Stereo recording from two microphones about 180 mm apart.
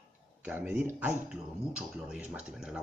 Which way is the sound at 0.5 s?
10° right (ahead or behind).